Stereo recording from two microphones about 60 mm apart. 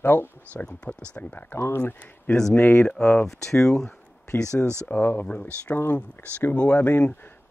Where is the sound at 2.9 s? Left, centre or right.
Centre.